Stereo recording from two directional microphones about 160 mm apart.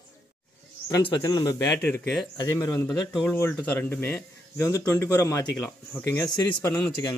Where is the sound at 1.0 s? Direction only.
25° left (ahead or behind).